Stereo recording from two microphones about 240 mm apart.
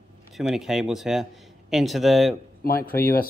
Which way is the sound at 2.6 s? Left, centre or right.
Left.